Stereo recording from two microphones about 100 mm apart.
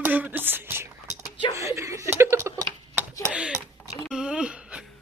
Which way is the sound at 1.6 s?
30° right (ahead or behind).